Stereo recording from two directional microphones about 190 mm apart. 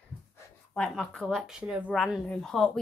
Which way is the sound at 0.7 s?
5° left (ahead or behind).